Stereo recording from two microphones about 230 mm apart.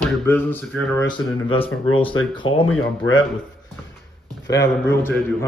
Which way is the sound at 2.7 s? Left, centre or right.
Left.